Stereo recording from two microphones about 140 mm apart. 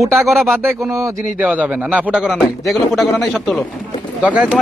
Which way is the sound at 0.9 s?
20° right (ahead or behind).